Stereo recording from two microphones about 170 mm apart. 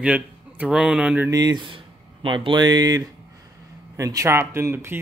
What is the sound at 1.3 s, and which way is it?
Speech, 25° right (ahead or behind).